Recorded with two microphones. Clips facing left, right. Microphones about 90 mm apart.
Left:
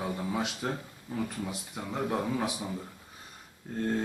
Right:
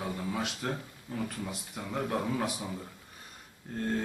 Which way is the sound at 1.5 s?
5° left (ahead or behind).